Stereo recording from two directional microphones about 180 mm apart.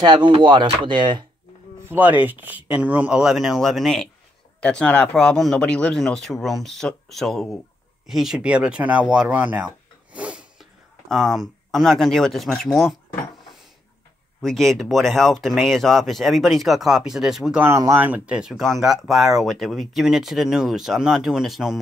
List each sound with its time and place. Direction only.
0.0 s speech: 25° right (ahead or behind)
1.9 s speech: 10° right (ahead or behind)
14.4 s speech: centre (ahead or behind)